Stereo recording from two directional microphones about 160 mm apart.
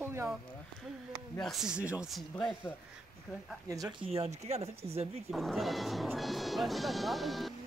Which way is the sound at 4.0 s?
40° right (ahead or behind).